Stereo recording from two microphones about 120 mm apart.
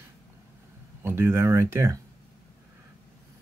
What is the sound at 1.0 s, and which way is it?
Speech, 20° right (ahead or behind).